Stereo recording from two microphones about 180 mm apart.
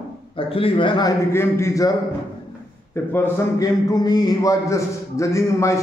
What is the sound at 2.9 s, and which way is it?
A man's voice, 10° left (ahead or behind).